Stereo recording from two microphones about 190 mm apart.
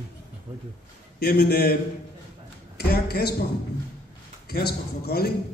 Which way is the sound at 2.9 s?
55° left (ahead or behind).